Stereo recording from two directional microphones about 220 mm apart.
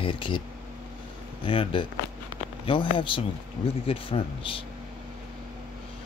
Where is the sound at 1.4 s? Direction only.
25° left (ahead or behind).